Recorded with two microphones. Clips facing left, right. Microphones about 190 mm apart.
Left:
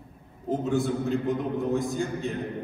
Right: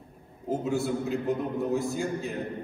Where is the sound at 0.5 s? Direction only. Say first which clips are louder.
Left 2 dB; centre (ahead or behind).